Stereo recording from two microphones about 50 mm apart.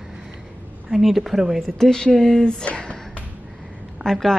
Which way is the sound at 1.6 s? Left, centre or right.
Centre.